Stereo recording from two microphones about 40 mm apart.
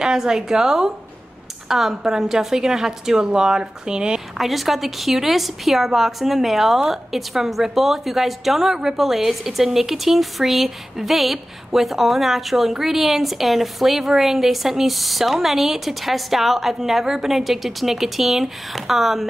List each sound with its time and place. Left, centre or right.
0.0 s a woman's voice: centre
4.4 s a woman's voice: centre